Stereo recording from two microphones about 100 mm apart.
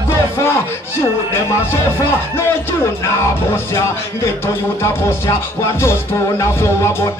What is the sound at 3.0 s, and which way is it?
Music, 25° left (ahead or behind).